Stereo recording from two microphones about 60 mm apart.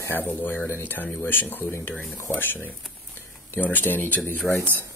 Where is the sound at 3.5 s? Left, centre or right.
Left.